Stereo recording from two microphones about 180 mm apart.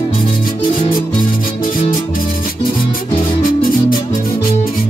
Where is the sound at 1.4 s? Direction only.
50° left (ahead or behind).